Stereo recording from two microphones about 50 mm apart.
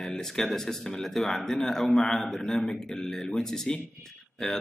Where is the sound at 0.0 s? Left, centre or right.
Centre.